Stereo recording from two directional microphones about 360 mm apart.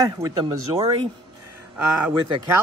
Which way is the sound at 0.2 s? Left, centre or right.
Centre.